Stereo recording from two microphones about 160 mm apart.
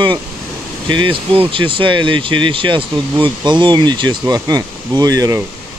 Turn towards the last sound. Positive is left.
turn(degrees=-20)  # may be behind; listen again after turning